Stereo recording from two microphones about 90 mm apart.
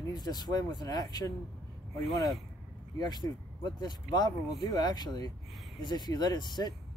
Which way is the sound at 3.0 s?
50° left (ahead or behind).